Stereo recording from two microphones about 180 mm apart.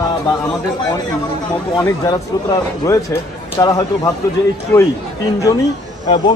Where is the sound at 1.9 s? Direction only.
20° left (ahead or behind).